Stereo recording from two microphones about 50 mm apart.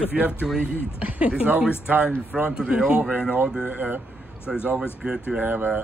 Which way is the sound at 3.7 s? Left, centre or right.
Right.